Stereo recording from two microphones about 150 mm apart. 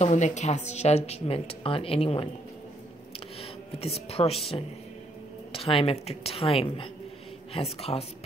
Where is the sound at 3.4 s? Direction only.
40° left (ahead or behind).